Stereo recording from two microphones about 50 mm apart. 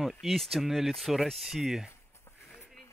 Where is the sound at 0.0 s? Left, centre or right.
Centre.